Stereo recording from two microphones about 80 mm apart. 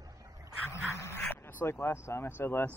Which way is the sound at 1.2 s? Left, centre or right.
Left.